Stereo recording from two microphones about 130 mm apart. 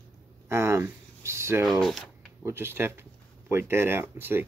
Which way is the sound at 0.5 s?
20° right (ahead or behind).